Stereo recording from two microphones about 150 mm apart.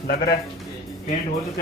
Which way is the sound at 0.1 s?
90° left.